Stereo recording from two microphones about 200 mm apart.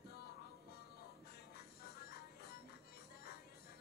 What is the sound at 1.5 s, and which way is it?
Music, 55° left (ahead or behind).